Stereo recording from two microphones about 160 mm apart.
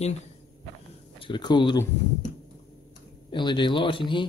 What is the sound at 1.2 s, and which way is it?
Speech, 30° left (ahead or behind).